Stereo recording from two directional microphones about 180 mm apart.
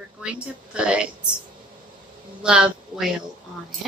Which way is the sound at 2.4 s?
5° right (ahead or behind).